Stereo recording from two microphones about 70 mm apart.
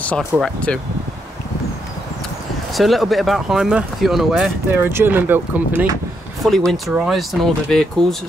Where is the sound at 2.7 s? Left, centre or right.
Centre.